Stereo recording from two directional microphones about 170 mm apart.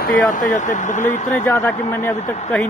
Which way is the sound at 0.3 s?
50° left (ahead or behind).